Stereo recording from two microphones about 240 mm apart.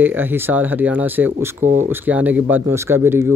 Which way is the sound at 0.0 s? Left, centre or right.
Centre.